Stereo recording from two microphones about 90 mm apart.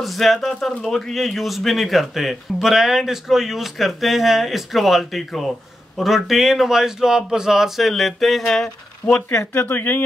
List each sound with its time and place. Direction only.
0.0 s speech: centre (ahead or behind)
9.5 s speech: 25° left (ahead or behind)